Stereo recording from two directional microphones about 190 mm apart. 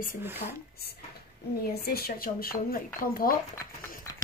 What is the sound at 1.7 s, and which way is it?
Speech, 55° left (ahead or behind).